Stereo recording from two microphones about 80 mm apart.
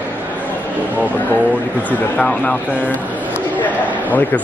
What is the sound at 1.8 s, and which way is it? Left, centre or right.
A man's voice, centre.